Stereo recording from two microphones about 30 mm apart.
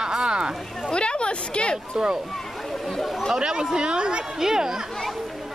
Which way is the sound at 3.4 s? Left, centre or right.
Right.